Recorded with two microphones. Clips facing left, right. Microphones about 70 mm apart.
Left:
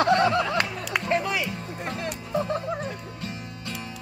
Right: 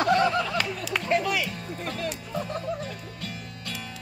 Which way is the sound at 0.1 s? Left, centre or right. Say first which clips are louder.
Left 2 dB; left.